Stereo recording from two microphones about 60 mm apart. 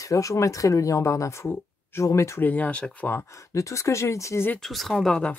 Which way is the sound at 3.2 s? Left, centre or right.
Left.